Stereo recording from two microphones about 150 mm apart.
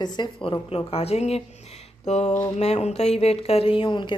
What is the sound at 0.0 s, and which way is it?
A woman's voice, 30° left (ahead or behind).